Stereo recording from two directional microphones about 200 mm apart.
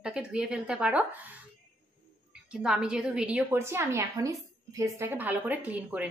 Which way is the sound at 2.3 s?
5° right (ahead or behind).